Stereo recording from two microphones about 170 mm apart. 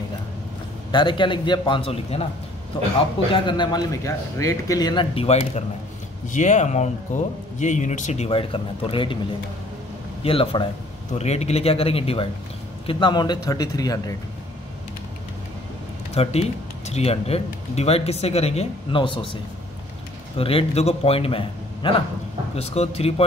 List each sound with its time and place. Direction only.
0.9 s a man's voice: 30° left (ahead or behind)
6.2 s speech: 45° left (ahead or behind); by 9.2 s 30° left (ahead or behind)
10.2 s a man's voice: 30° left (ahead or behind)
16.2 s speech: 40° left (ahead or behind)
20.3 s speech: 35° left (ahead or behind)